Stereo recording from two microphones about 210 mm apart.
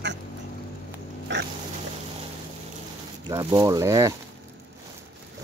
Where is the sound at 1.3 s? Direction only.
60° right (ahead or behind).